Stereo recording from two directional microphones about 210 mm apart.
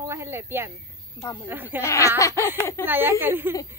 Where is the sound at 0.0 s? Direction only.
15° right (ahead or behind).